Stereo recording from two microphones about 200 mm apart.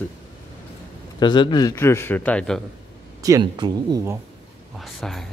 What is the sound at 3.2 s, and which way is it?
Speech, 15° right (ahead or behind).